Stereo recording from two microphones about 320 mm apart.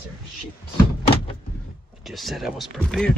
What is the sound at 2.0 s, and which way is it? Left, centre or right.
Speech, centre.